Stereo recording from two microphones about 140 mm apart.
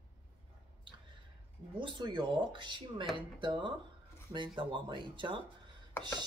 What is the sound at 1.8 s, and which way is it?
Speech, 35° right (ahead or behind).